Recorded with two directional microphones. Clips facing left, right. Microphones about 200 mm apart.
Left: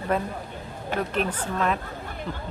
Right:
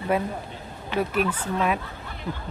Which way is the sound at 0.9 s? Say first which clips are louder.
Right 3 dB; 45° left (ahead or behind).